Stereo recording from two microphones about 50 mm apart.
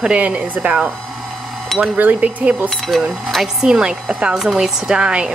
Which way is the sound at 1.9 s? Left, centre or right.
Right.